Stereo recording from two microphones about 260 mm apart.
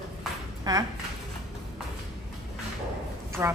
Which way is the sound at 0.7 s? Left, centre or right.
Centre.